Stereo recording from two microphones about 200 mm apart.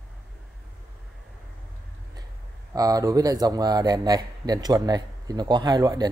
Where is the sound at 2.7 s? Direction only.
20° right (ahead or behind).